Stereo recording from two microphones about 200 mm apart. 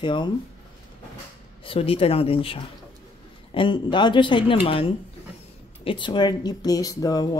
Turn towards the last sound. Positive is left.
turn(degrees=20)  # may be behind; listen again after turning